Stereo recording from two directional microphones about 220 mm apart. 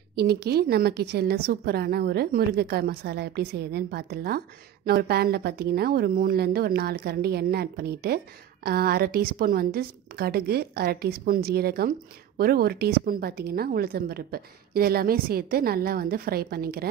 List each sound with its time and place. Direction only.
0.1 s a woman's voice: 45° right (ahead or behind)